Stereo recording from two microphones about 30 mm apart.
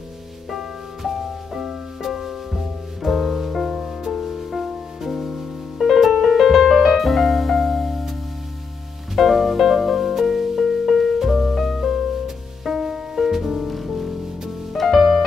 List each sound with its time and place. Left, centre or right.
0.5 s music: centre
3.7 s music: right
4.1 s music: centre
9.1 s music: centre
12.6 s music: centre
15.0 s music: centre